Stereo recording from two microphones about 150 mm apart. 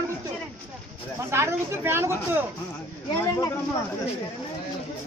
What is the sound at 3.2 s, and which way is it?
Speech, 20° left (ahead or behind).